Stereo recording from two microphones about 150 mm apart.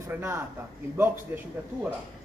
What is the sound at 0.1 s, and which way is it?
A man's voice, 15° right (ahead or behind).